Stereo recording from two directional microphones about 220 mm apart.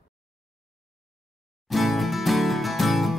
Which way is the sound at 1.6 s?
Centre (ahead or behind).